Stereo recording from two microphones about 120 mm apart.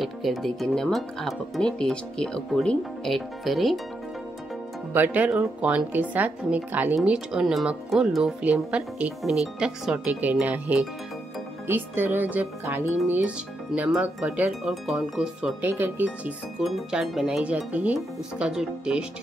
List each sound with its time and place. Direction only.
0.0 s speech: centre (ahead or behind)
4.9 s speech: 15° right (ahead or behind)
14.6 s speech: centre (ahead or behind)
15.6 s speech: 15° right (ahead or behind)
16.6 s speech: centre (ahead or behind)